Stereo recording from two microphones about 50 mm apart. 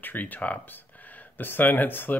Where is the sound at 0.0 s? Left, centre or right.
Left.